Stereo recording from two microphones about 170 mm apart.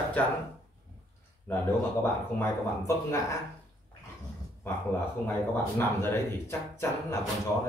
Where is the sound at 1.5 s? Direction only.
15° left (ahead or behind).